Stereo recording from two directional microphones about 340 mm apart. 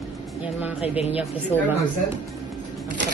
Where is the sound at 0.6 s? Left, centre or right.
Centre.